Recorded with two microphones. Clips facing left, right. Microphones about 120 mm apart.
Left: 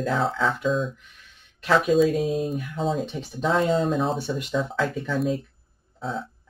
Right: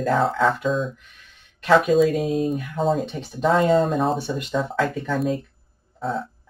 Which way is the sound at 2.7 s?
45° right (ahead or behind).